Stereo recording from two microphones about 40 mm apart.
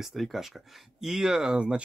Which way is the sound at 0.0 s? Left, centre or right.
Centre.